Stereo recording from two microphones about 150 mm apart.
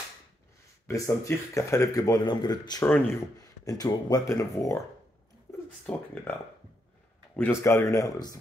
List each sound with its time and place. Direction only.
0.8 s speech: 20° left (ahead or behind)
5.5 s a sound: 15° left (ahead or behind)
7.3 s speech: 15° left (ahead or behind)